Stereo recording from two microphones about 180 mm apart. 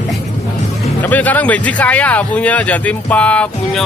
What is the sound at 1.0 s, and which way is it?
Speech, 10° left (ahead or behind).